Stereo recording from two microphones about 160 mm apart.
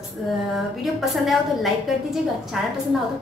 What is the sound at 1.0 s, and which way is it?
Speech, centre (ahead or behind).